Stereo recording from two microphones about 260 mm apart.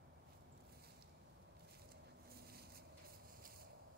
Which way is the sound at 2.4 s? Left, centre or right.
Right.